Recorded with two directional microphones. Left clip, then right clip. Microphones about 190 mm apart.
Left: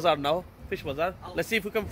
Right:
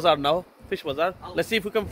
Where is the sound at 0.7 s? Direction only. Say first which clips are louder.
Right 4 dB; 15° right (ahead or behind).